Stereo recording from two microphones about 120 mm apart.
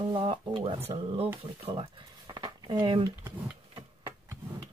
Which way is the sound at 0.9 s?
35° right (ahead or behind).